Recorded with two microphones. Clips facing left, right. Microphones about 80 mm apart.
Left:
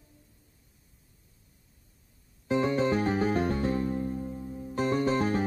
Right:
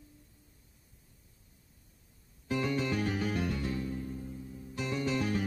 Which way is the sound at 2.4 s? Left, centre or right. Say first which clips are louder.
Left 6 dB; left.